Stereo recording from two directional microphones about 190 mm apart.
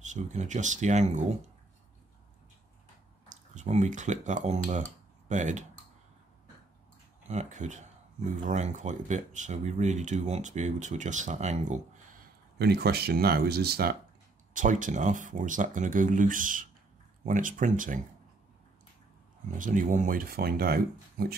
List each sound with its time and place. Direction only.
0.0 s speech: 40° right (ahead or behind)
3.3 s speech: 40° right (ahead or behind)
7.2 s speech: 40° right (ahead or behind)
12.5 s speech: 60° right (ahead or behind)
14.5 s speech: 45° right (ahead or behind)
19.6 s speech: 45° right (ahead or behind)